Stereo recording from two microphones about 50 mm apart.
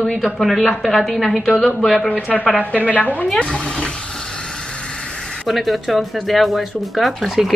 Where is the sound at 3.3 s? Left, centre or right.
Centre.